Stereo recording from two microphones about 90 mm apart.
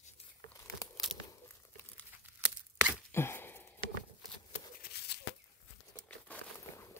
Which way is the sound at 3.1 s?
25° left (ahead or behind).